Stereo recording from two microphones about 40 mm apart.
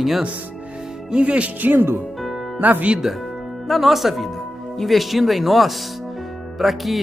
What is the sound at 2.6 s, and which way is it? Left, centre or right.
Speech, right.